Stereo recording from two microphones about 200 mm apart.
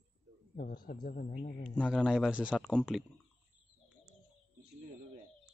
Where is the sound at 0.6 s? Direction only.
45° left (ahead or behind).